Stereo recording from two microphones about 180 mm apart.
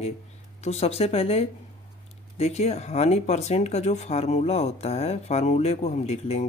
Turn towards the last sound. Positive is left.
turn(degrees=35)  # may be behind; listen again after turning